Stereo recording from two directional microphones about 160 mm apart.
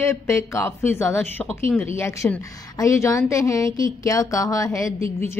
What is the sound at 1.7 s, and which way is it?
Speech, centre (ahead or behind).